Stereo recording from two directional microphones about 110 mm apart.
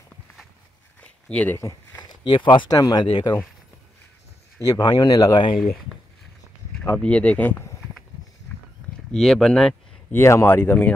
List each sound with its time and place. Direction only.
1.0 s a sound: 10° left (ahead or behind)
1.6 s speech: 25° left (ahead or behind)
2.0 s speech: 45° left (ahead or behind)
4.6 s speech: 35° left (ahead or behind)
6.8 s speech: 10° left (ahead or behind)
8.5 s walk: 20° left (ahead or behind)
9.1 s speech: 5° left (ahead or behind)
10.1 s speech: 25° left (ahead or behind)